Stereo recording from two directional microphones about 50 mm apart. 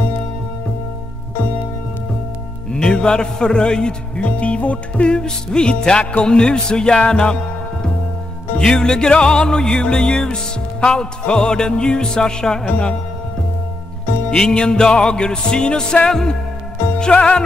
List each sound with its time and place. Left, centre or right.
2.7 s a man's voice: centre
8.5 s a man's voice: centre
14.5 s a man's voice: centre
17.1 s music: left